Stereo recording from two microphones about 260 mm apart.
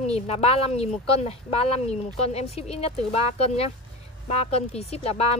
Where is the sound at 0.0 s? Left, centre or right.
Left.